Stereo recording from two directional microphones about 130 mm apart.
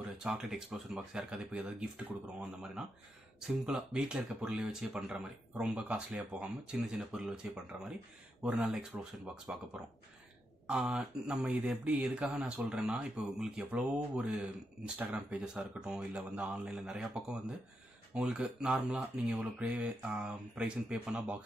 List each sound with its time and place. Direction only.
0.2 s speech: 5° right (ahead or behind)
10.7 s speech: 10° right (ahead or behind)